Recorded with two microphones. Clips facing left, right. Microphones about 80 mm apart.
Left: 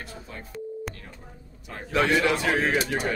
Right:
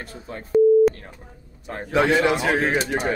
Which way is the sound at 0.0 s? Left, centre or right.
Right.